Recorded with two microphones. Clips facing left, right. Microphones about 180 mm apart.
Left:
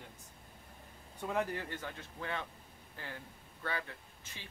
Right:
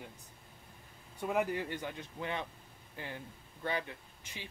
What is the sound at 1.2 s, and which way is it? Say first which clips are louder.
Speech: right 3 dB; 15° right (ahead or behind).